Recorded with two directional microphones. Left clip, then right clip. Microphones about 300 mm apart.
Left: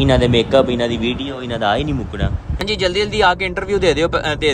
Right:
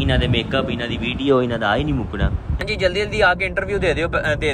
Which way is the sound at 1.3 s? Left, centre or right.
Centre.